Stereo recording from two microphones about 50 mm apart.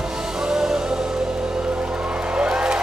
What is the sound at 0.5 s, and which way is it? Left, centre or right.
Music, centre.